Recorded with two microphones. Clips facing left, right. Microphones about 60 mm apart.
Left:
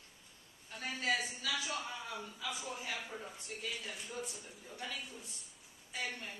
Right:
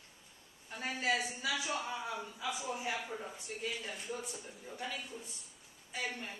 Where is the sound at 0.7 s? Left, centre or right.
Centre.